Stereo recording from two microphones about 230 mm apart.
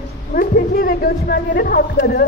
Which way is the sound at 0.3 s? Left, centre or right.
Left.